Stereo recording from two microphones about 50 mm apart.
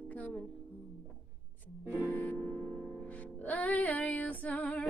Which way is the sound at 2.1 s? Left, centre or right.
Left.